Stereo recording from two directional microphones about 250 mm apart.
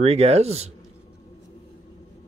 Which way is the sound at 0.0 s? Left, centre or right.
Right.